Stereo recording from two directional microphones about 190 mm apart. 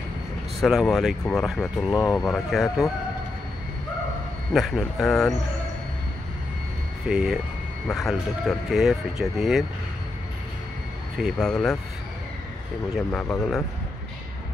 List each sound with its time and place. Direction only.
0.6 s speech: centre (ahead or behind)
4.6 s speech: centre (ahead or behind)
7.1 s speech: 5° right (ahead or behind)
11.1 s speech: centre (ahead or behind)
12.9 s speech: 5° left (ahead or behind)